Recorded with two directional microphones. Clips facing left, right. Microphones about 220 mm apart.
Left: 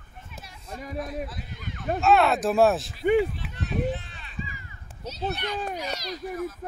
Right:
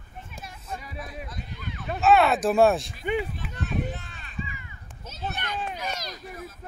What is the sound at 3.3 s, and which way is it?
Run, 45° right (ahead or behind).